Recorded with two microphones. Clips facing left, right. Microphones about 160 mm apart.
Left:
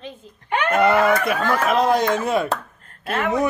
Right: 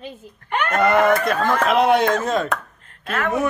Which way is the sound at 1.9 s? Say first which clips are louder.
Right 2 dB; 60° right (ahead or behind).